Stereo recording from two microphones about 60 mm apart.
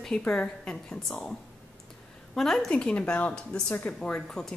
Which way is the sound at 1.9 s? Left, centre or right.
Centre.